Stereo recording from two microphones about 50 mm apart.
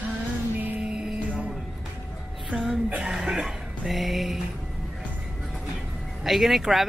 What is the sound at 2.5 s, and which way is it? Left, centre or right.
Speech, right.